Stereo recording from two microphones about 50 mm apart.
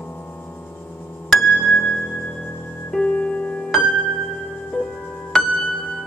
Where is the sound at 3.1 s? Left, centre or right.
Left.